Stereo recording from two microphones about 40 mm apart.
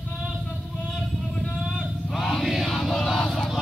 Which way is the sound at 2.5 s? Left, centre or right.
Centre.